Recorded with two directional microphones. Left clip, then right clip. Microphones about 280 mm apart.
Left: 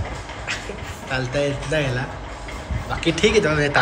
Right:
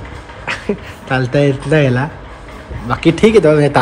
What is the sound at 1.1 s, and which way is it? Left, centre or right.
A man's voice, right.